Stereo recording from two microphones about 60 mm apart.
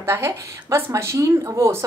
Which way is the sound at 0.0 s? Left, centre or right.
Right.